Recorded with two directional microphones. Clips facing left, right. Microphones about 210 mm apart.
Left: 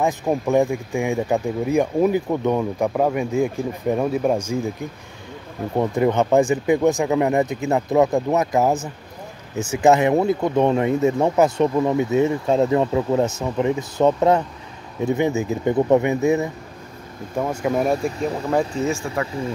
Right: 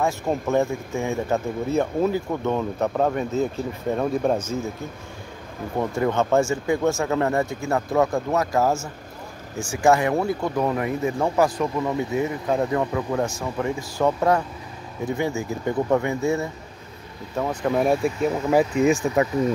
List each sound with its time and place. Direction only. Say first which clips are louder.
0.0 s speech: left 3 dB; 15° left (ahead or behind)
5.8 s speech: left 4 dB; 20° left (ahead or behind); by 18.7 s 5° right (ahead or behind)
18.8 s speech: right 4 dB; 20° right (ahead or behind)